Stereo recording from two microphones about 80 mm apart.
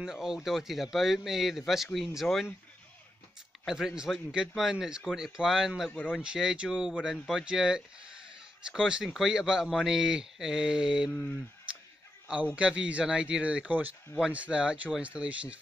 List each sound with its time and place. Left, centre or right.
0.0 s a man's voice: centre
3.6 s speech: centre
5.9 s speech: left
6.1 s speech: centre
11.1 s speech: left
12.5 s speech: centre